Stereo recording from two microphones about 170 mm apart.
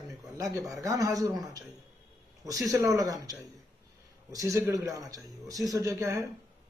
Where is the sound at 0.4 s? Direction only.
20° right (ahead or behind).